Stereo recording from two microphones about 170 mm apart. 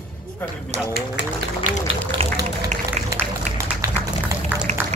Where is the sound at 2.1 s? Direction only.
30° right (ahead or behind).